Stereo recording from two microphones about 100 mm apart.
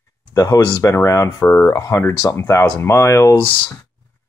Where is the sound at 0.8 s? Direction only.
30° left (ahead or behind).